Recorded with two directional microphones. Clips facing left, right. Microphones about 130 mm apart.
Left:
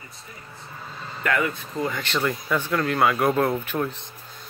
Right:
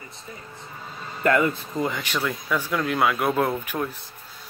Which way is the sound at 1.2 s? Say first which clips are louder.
Right 4 dB; 30° right (ahead or behind).